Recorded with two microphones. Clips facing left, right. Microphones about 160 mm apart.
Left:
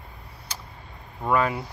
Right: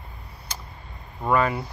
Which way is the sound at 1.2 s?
Centre (ahead or behind).